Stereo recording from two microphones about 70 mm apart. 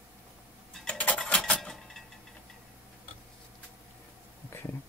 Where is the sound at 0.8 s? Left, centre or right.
Centre.